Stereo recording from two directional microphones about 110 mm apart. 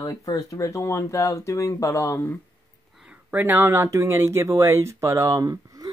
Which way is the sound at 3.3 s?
15° right (ahead or behind).